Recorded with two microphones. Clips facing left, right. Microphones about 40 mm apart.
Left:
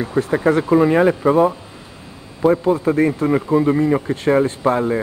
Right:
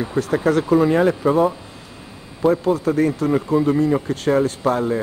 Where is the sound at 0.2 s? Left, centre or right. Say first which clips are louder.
Left 2 dB; left.